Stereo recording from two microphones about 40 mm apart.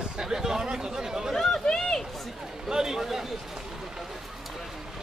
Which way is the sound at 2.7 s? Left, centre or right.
Centre.